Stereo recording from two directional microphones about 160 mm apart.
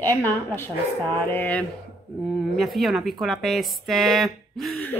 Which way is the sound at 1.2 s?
10° left (ahead or behind).